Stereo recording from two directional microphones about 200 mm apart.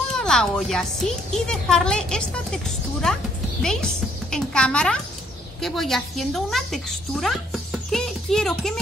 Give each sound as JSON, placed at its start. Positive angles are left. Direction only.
{"t": 0.1, "sound": "a woman's voice", "side_deg": 5}